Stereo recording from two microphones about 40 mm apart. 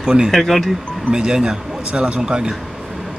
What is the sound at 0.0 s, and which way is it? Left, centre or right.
Speech, centre.